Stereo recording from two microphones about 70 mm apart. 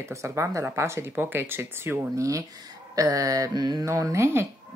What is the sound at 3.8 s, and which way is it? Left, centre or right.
Speech, right.